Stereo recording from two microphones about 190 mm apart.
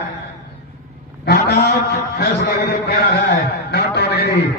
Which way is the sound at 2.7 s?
60° left (ahead or behind).